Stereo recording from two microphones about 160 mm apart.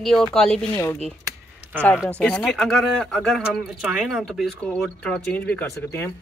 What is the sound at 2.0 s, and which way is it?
Speech, 5° left (ahead or behind).